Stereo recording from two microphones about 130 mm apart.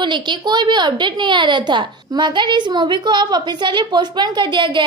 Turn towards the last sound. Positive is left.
turn(degrees=-40)  # may be behind; listen again after turning